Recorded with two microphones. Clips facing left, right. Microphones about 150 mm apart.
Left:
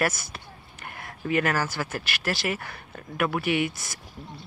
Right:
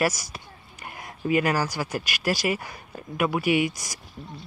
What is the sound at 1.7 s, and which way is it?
Speech, 15° right (ahead or behind).